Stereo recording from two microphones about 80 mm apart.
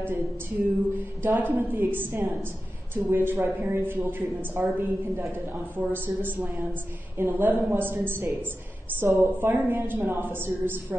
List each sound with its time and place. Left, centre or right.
1.2 s speech: right